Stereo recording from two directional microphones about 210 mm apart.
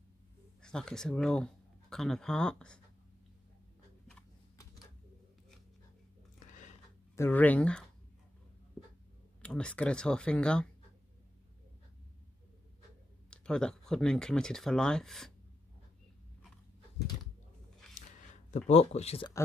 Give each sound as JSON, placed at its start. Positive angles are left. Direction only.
{"t": 0.6, "sound": "speech", "side_deg": 5}
{"t": 6.5, "sound": "a sound", "side_deg": 35}
{"t": 7.2, "sound": "speech", "side_deg": 10}
{"t": 9.4, "sound": "speech", "side_deg": 5}
{"t": 13.3, "sound": "speech", "side_deg": 5}
{"t": 18.7, "sound": "speech", "side_deg": 30}